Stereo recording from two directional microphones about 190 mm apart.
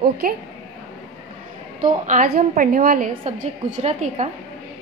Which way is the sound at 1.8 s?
40° right (ahead or behind).